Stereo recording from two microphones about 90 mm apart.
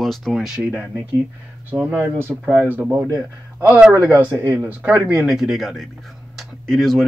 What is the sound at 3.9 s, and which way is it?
Speech, 20° right (ahead or behind).